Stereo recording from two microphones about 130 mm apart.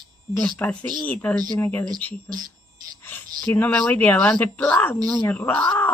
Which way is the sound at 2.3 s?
30° right (ahead or behind).